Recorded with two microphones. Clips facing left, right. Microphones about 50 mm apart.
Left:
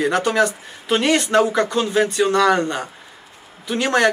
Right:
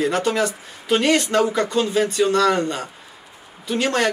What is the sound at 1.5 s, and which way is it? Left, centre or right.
Speech, left.